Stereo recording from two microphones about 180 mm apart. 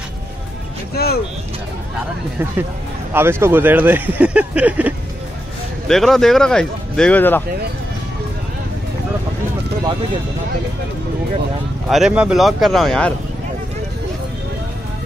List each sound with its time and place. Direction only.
0.9 s speech: 60° left (ahead or behind)
3.1 s speech: 10° right (ahead or behind)
5.9 s speech: centre (ahead or behind)
11.9 s speech: 5° right (ahead or behind)